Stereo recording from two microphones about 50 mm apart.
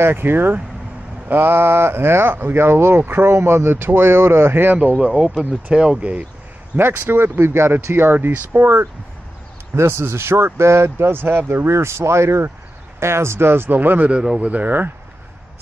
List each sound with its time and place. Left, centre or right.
0.0 s speech: right
3.3 s speech: right
5.0 s speech: centre
7.0 s speech: right
9.8 s speech: right
14.1 s speech: centre
14.5 s speech: right